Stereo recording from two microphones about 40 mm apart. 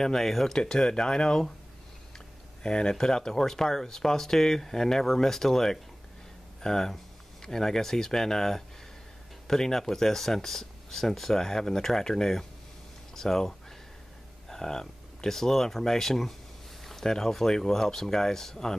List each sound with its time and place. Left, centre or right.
0.0 s speech: centre
13.1 s a sound: centre
14.5 s speech: centre